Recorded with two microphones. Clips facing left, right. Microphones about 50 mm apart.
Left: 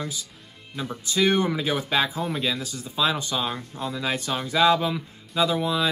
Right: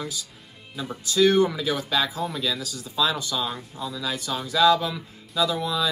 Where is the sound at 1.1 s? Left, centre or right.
Left.